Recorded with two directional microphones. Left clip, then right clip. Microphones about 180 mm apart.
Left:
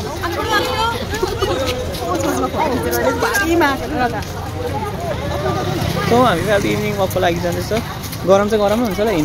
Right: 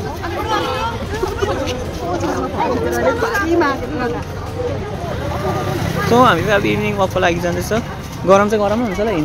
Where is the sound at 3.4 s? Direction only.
55° left (ahead or behind).